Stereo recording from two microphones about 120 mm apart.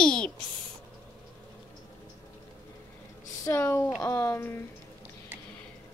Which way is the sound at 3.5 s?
20° left (ahead or behind).